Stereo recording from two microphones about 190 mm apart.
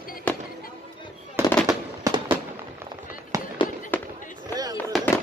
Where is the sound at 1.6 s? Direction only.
20° right (ahead or behind).